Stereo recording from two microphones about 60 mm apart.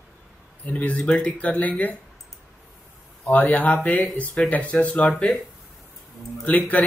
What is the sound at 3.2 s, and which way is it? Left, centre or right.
Speech, left.